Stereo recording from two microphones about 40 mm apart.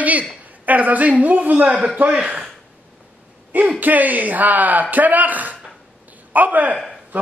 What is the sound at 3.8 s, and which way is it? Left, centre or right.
Speech, right.